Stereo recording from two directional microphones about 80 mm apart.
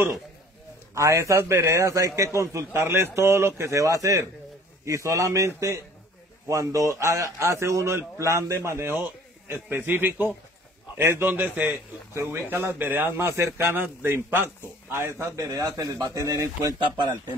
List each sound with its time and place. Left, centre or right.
0.9 s a man's voice: right
12.1 s a man's voice: right
15.5 s speech: right
16.7 s speech: right